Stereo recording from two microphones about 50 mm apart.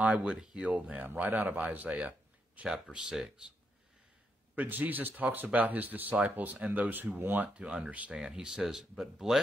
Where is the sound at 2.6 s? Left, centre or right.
Centre.